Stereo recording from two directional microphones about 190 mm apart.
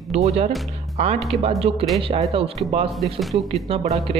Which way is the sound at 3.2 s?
Centre (ahead or behind).